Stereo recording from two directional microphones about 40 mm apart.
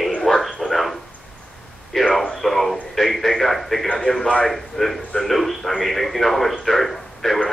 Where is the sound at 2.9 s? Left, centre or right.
Centre.